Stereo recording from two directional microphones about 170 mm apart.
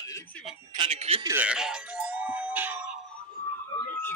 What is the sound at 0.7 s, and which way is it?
Speech, 30° right (ahead or behind).